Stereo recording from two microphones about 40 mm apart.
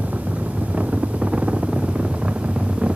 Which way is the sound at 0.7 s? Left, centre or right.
Right.